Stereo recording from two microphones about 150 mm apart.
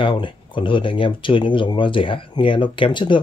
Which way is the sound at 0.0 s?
35° left (ahead or behind).